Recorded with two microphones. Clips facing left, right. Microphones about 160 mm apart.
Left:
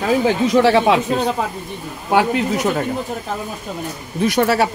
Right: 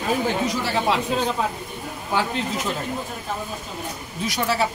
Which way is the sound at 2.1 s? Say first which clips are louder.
Left 8 dB; 70° left (ahead or behind).